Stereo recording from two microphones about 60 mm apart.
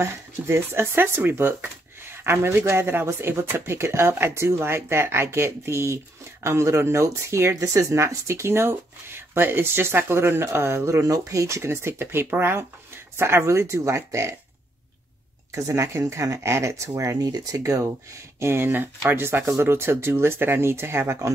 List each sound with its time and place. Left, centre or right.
0.0 s speech: right
15.5 s speech: right